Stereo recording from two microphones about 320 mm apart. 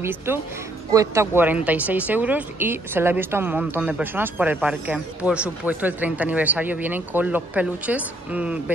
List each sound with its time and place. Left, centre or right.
0.0 s speech: centre